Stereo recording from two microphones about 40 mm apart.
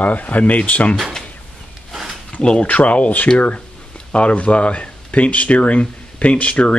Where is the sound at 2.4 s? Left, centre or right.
Left.